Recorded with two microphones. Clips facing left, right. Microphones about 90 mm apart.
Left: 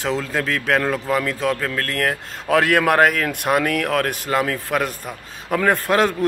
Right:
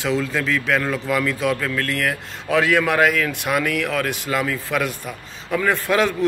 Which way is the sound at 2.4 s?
55° left (ahead or behind).